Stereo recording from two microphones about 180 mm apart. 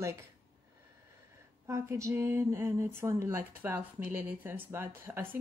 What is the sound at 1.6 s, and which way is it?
Speech, 15° right (ahead or behind).